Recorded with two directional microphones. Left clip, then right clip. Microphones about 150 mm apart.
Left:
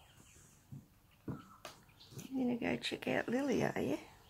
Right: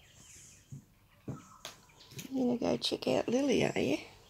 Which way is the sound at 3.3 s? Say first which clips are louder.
Right 5 dB; 45° right (ahead or behind).